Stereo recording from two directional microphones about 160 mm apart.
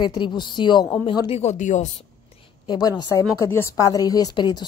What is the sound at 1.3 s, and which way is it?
Speech, 45° left (ahead or behind).